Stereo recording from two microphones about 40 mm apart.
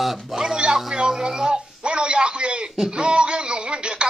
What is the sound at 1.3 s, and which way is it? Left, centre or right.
Speech, centre.